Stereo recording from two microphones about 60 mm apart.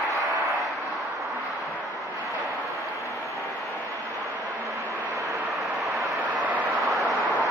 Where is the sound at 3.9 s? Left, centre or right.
Right.